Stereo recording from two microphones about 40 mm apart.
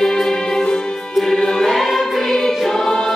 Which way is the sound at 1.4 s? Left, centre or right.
Centre.